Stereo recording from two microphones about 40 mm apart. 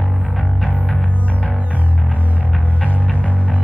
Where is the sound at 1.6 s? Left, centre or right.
Right.